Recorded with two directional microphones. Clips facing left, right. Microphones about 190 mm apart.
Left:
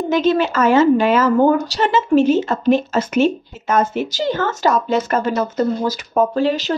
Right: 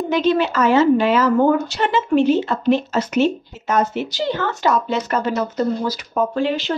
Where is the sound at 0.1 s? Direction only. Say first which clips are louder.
Left 1 dB; 45° left (ahead or behind).